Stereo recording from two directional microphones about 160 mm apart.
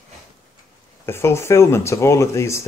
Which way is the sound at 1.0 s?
15° left (ahead or behind).